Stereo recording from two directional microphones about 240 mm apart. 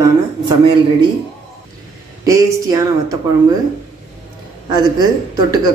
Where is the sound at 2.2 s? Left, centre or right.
Centre.